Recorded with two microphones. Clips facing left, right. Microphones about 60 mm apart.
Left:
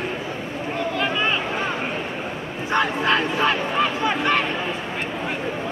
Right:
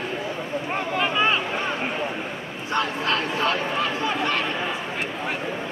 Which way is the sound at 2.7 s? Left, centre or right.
Left.